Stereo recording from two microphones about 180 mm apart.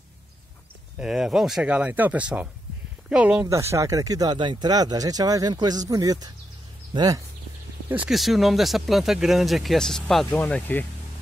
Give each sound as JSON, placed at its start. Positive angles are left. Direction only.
{"t": 0.9, "sound": "speech", "side_deg": -5}
{"t": 7.9, "sound": "speech", "side_deg": -5}